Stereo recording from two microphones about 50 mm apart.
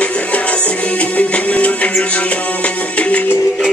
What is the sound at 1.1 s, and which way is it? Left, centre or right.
Music, left.